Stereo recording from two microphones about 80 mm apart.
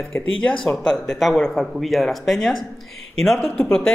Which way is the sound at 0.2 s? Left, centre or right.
Centre.